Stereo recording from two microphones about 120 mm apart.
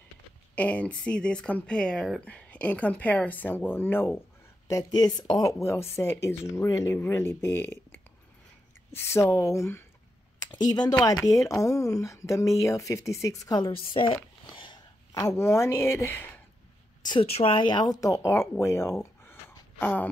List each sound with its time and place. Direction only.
0.6 s speech: 10° left (ahead or behind)
4.6 s speech: 30° left (ahead or behind)
10.4 s speech: 35° left (ahead or behind)
14.5 s a sound: 40° left (ahead or behind)
15.1 s speech: 25° left (ahead or behind)
17.1 s speech: 55° left (ahead or behind)
17.6 s speech: 40° left (ahead or behind)
18.0 s speech: 25° left (ahead or behind)